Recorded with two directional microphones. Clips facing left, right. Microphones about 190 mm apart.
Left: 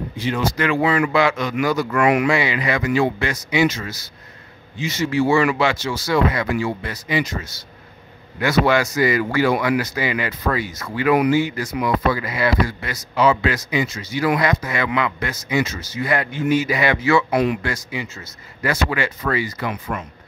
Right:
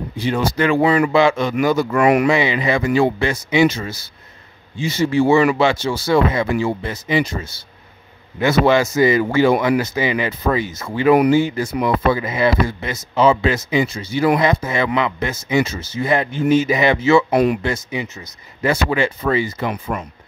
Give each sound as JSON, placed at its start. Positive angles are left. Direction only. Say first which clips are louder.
{"t": 0.2, "sound": "speech", "louder": "right 3 dB", "side_deg": -35}
{"t": 2.0, "sound": "speech", "louder": "right 2 dB", "side_deg": -40}
{"t": 2.2, "sound": "speech", "louder": "right 3 dB", "side_deg": -20}